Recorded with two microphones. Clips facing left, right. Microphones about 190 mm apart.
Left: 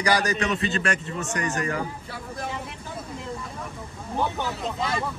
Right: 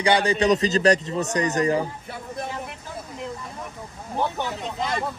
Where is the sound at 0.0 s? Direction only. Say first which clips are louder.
Right 4 dB; 30° right (ahead or behind).